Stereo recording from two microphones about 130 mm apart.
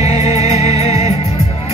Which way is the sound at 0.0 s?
55° left (ahead or behind).